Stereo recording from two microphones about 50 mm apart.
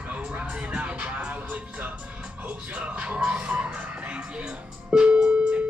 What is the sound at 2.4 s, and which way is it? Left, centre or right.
Speech, right.